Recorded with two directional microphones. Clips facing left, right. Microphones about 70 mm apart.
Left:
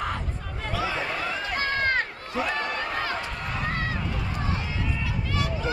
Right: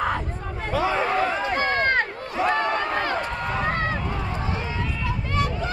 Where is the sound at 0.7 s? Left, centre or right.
Right.